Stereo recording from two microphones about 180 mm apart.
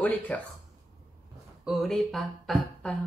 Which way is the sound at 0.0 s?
10° left (ahead or behind).